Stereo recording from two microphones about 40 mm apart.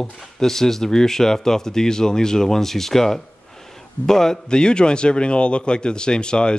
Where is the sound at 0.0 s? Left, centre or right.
Centre.